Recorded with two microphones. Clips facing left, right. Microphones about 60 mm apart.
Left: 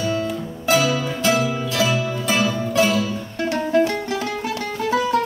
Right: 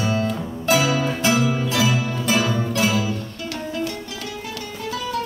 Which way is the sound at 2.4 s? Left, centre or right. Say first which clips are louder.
Left 2 dB; centre.